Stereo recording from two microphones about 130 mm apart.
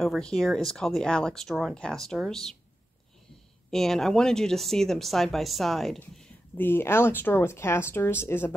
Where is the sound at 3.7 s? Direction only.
5° left (ahead or behind).